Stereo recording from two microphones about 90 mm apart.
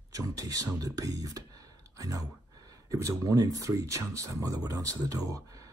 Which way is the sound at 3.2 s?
40° right (ahead or behind).